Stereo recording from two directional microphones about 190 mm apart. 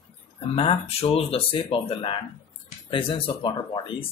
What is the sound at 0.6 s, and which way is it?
Speech, 30° left (ahead or behind).